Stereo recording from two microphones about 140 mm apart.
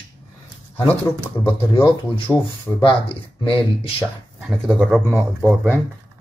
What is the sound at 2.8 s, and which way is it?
Speech, 40° left (ahead or behind).